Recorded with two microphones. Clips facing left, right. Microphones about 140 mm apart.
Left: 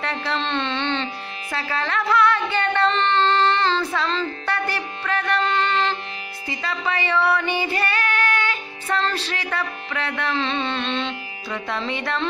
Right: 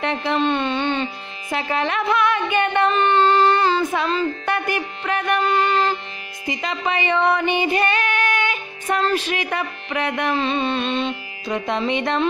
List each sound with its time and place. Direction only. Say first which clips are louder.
0.0 s speech: right 5 dB; 20° right (ahead or behind)
6.4 s child singing: right 3 dB; 20° right (ahead or behind)